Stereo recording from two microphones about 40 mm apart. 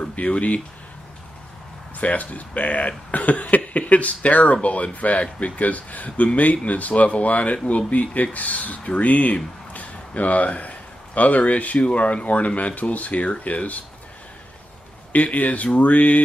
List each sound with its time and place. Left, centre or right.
0.0 s speech: left
2.0 s speech: left
15.1 s speech: left